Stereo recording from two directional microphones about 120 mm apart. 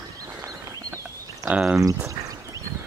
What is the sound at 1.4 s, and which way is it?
Speech, 10° right (ahead or behind).